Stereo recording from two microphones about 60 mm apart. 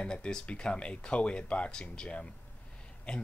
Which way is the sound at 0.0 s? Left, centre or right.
Centre.